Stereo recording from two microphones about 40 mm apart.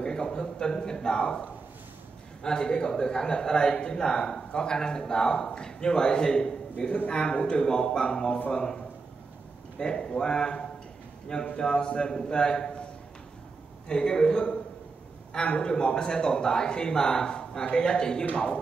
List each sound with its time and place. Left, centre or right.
0.0 s a man's voice: centre
2.4 s a man's voice: centre
13.8 s a man's voice: centre